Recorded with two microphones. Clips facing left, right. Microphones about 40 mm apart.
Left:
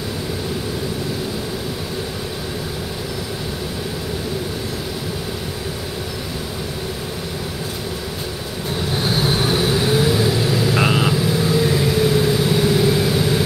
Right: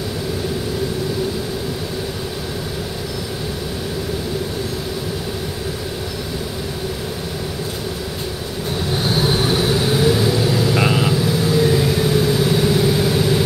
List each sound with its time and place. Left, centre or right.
8.9 s vehicle: centre